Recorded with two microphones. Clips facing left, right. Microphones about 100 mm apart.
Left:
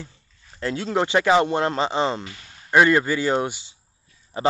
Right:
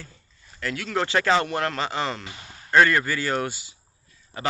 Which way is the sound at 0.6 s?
25° left (ahead or behind).